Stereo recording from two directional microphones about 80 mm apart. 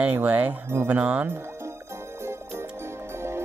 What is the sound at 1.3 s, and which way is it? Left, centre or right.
Music, right.